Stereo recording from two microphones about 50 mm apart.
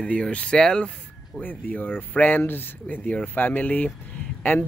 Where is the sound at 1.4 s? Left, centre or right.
Left.